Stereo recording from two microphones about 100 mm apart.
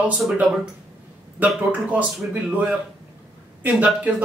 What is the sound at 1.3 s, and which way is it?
A man's voice, 15° right (ahead or behind).